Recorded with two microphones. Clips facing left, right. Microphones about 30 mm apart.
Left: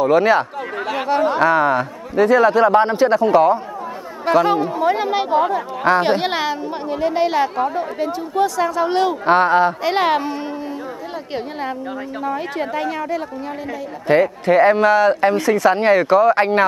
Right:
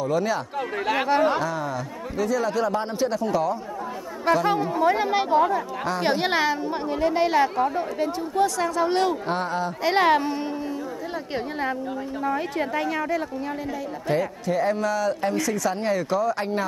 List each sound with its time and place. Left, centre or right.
0.0 s speech: left
0.8 s speech: centre
1.4 s speech: left
4.5 s speech: centre
5.9 s speech: left
6.2 s speech: centre
9.2 s speech: left
9.8 s speech: centre
12.3 s speech: centre
14.0 s speech: left